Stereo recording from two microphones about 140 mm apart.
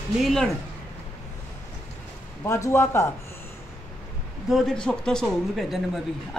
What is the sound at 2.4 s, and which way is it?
Speech, 20° left (ahead or behind).